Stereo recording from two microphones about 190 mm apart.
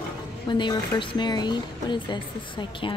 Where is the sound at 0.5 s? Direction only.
25° left (ahead or behind).